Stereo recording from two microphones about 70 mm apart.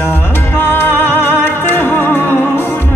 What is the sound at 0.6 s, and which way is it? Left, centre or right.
Music, left.